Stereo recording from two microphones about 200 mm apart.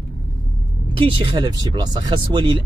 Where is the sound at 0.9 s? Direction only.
25° right (ahead or behind).